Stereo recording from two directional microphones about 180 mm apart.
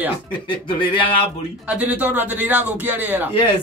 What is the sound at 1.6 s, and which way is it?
A man's voice, 10° right (ahead or behind).